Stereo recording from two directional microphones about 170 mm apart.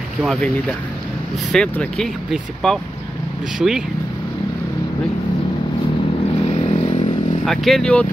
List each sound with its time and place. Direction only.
0.2 s speech: centre (ahead or behind)
1.5 s speech: 5° left (ahead or behind)
6.4 s vehicle: 40° left (ahead or behind)
7.4 s speech: centre (ahead or behind)